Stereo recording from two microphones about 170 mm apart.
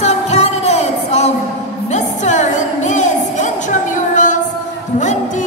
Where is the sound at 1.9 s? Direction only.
45° left (ahead or behind).